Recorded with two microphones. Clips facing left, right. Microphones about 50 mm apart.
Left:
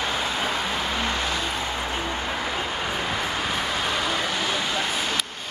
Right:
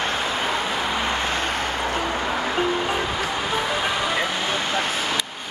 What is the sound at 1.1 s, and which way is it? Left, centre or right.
Music, right.